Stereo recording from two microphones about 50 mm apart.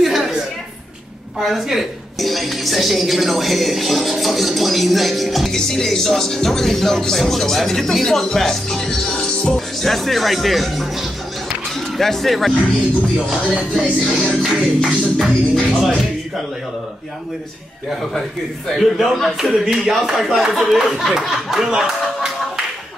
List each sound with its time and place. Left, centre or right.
0.0 s a sound: centre
1.4 s speech: centre
9.8 s speech: centre
14.1 s speech: centre
15.7 s speech: right
18.7 s speech: centre